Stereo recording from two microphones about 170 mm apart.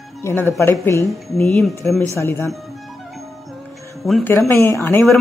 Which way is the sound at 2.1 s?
15° left (ahead or behind).